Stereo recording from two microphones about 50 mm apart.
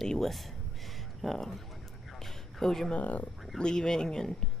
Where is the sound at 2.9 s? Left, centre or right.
Left.